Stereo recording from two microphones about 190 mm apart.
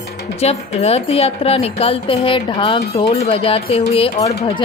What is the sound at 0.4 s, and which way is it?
Speech, 35° left (ahead or behind).